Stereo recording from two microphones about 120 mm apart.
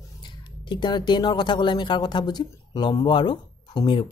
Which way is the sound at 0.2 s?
40° left (ahead or behind).